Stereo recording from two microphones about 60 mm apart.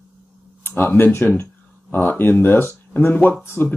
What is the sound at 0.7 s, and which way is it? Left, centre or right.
Speech, left.